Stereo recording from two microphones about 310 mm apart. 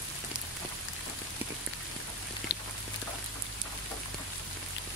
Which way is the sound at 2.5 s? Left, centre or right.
Left.